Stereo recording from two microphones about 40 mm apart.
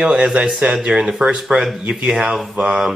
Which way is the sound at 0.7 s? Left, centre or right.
Centre.